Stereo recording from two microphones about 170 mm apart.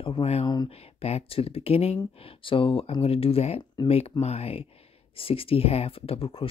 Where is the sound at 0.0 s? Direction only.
35° left (ahead or behind).